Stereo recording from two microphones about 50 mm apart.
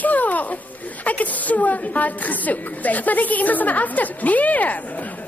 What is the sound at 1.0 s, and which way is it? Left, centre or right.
A woman's voice, left.